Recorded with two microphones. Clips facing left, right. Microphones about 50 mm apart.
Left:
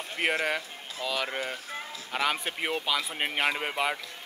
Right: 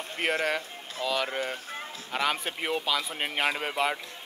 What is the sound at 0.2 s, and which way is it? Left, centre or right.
Speech, left.